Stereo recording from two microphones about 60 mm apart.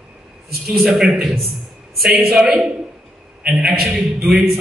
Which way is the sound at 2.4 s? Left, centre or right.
Centre.